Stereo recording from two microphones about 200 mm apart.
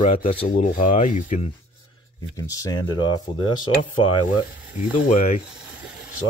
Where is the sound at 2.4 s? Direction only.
15° left (ahead or behind).